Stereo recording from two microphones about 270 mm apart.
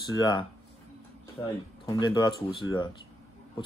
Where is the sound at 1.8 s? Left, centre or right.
Centre.